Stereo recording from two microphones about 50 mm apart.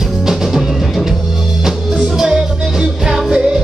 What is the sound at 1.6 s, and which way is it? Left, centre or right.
Music, centre.